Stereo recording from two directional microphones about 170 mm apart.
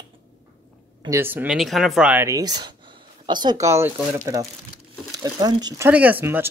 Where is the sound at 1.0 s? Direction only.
15° right (ahead or behind).